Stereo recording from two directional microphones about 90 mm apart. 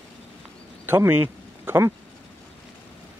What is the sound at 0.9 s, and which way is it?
Speech, 25° right (ahead or behind).